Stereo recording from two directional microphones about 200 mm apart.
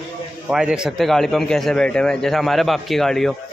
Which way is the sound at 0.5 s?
5° right (ahead or behind).